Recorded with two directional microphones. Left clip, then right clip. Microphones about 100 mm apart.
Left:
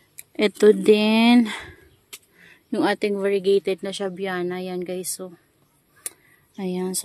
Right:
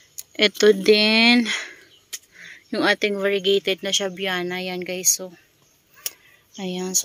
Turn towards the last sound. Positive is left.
turn(degrees=30)  # may be behind; listen again after turning